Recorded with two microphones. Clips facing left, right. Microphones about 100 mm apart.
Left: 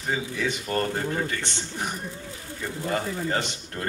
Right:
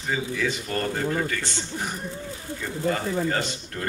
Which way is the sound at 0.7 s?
35° left (ahead or behind).